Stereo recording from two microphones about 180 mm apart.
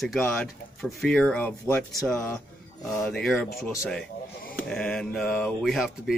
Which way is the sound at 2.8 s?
Centre (ahead or behind).